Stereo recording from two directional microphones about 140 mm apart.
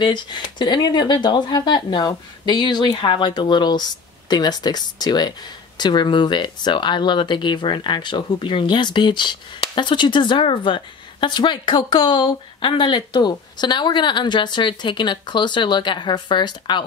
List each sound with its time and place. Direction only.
0.0 s speech: 35° left (ahead or behind)